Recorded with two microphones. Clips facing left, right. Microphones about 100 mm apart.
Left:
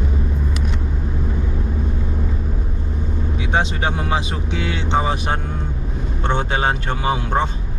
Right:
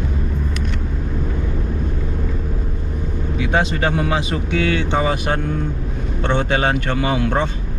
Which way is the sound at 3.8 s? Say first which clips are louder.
Right 2 dB; 15° left (ahead or behind).